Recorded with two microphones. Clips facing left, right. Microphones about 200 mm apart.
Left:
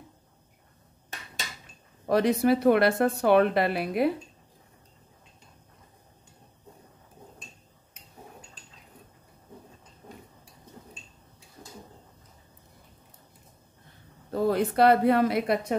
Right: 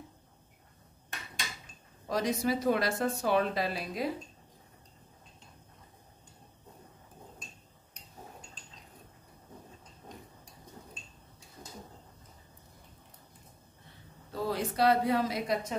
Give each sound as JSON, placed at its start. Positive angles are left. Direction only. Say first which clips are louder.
{"t": 2.0, "sound": "a woman's voice", "louder": "left 8 dB", "side_deg": 60}
{"t": 14.3, "sound": "speech", "louder": "left 8 dB", "side_deg": 55}